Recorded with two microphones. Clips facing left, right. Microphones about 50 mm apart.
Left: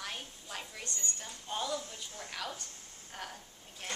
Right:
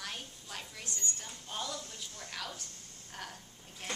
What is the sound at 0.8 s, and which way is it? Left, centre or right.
Speech, centre.